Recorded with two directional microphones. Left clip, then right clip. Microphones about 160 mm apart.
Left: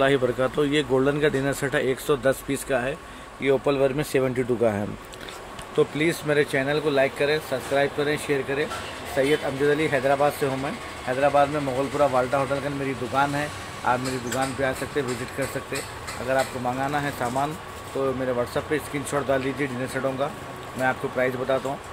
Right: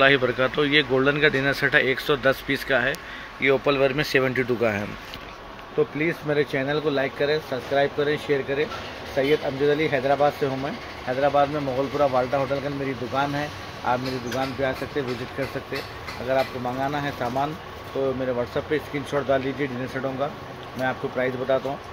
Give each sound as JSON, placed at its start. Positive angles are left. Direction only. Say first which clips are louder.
{"t": 0.0, "sound": "speech", "louder": "right 3 dB", "side_deg": 15}
{"t": 5.9, "sound": "speech", "louder": "left 1 dB", "side_deg": 20}
{"t": 6.3, "sound": "speech", "louder": "left 1 dB", "side_deg": 10}
{"t": 16.3, "sound": "speech", "louder": "even", "side_deg": 0}